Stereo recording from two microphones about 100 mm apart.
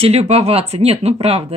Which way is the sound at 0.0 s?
90° right.